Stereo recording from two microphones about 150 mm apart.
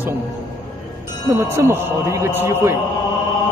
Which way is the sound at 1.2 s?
15° right (ahead or behind).